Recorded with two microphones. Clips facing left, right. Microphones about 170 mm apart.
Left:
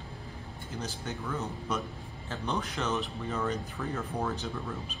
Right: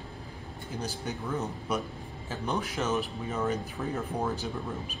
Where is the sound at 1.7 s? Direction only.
10° right (ahead or behind).